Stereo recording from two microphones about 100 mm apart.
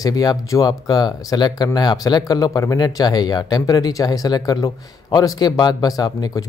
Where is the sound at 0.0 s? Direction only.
40° left (ahead or behind).